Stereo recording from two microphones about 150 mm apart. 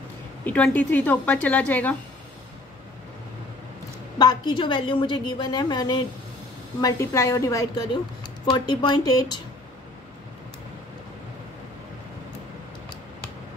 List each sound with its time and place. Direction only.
0.5 s a woman's voice: 10° left (ahead or behind)
4.2 s a woman's voice: 30° left (ahead or behind)
7.9 s a woman's voice: 30° left (ahead or behind)